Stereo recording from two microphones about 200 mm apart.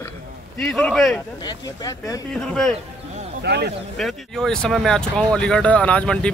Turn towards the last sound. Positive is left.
turn(degrees=5)  # may be behind; listen again after turning